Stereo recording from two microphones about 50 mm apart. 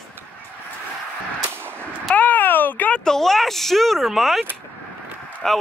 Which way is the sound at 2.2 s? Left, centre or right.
Left.